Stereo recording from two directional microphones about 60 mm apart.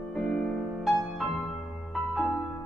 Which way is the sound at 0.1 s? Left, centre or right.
Centre.